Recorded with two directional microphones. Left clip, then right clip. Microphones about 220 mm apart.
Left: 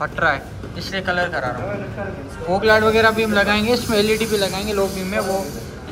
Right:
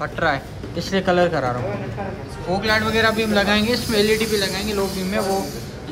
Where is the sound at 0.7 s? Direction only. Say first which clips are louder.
Right 3 dB; 30° right (ahead or behind).